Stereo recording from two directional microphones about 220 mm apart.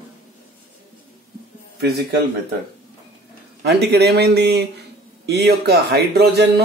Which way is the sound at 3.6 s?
50° right (ahead or behind).